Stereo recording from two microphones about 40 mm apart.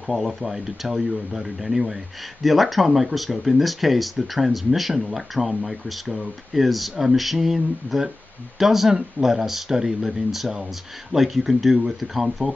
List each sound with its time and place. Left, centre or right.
0.0 s speech: centre